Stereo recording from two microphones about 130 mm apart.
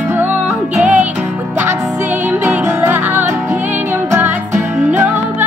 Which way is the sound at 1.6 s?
20° right (ahead or behind).